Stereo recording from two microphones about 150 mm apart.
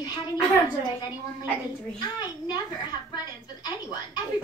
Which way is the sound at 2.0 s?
25° left (ahead or behind).